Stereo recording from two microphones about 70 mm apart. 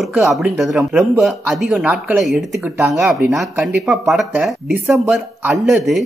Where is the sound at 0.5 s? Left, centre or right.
Centre.